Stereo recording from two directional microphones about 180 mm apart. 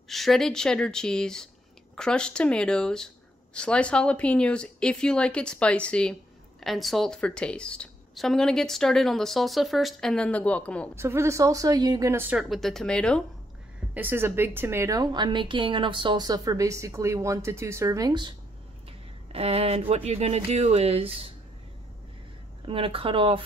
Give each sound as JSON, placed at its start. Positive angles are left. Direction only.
{"t": 0.1, "sound": "a woman's voice", "side_deg": 0}
{"t": 11.0, "sound": "a woman's voice", "side_deg": -15}
{"t": 13.9, "sound": "a woman's voice", "side_deg": -10}
{"t": 19.3, "sound": "speech", "side_deg": -35}
{"t": 22.7, "sound": "speech", "side_deg": -30}